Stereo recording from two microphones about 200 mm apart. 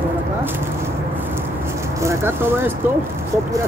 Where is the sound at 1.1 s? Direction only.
10° right (ahead or behind).